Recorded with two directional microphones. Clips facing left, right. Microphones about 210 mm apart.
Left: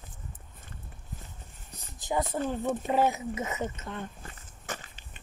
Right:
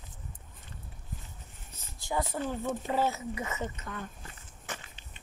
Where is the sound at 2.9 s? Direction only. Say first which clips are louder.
Left 4 dB; 20° left (ahead or behind).